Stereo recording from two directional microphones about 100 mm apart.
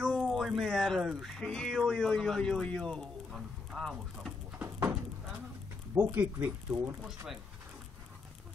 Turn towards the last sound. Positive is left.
turn(degrees=-5)  # may be behind; listen again after turning